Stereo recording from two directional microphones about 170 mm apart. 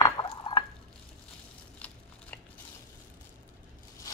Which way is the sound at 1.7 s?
10° left (ahead or behind).